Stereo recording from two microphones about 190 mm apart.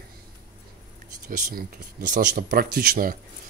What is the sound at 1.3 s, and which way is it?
Speech, 50° right (ahead or behind).